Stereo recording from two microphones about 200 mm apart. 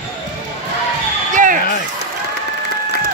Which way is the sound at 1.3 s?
40° right (ahead or behind).